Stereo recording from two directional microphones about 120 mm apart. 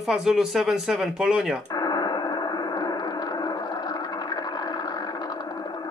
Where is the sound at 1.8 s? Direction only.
35° left (ahead or behind).